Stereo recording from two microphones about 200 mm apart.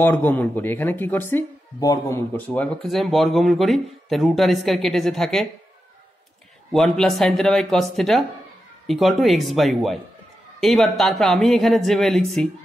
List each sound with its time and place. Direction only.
0.0 s speech: 10° left (ahead or behind)
6.7 s speech: centre (ahead or behind)